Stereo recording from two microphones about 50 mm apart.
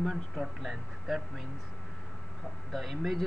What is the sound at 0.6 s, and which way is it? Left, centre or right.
Speech, centre.